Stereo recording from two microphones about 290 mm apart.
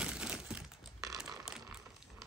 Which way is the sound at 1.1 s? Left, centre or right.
Centre.